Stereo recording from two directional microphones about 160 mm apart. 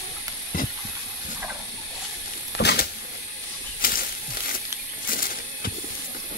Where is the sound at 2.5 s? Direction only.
90° left.